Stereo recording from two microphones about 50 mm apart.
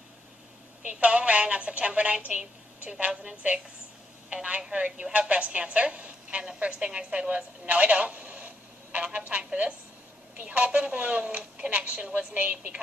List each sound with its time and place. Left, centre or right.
1.0 s a woman's voice: right